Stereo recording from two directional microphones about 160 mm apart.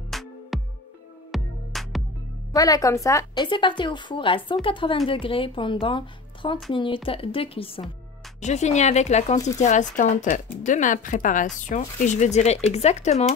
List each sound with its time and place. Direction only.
0.1 s music: centre (ahead or behind)
2.5 s a woman's voice: 20° left (ahead or behind)
3.4 s a woman's voice: 30° left (ahead or behind)
8.4 s speech: 45° left (ahead or behind)